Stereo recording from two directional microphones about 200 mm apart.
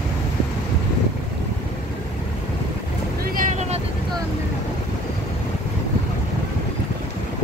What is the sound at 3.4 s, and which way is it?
Vehicle, 35° right (ahead or behind).